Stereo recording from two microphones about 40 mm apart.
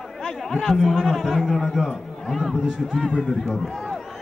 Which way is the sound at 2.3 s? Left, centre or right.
Centre.